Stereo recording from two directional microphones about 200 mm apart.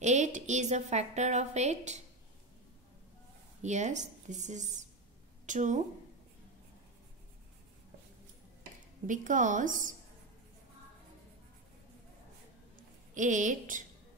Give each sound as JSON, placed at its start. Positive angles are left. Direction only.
{"t": 0.0, "sound": "a woman's voice", "side_deg": -35}
{"t": 3.6, "sound": "a woman's voice", "side_deg": -35}
{"t": 9.0, "sound": "a woman's voice", "side_deg": -40}
{"t": 13.1, "sound": "a woman's voice", "side_deg": -40}